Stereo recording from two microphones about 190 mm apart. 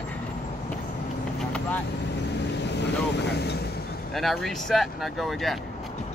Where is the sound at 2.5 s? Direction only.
65° left (ahead or behind).